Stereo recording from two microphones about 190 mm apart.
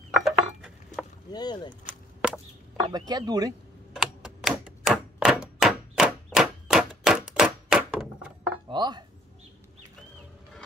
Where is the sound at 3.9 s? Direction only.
5° right (ahead or behind).